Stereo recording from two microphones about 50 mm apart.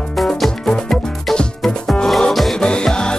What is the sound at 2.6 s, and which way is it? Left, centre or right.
Music, centre.